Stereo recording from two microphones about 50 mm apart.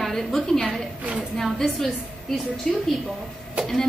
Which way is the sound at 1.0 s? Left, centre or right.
Right.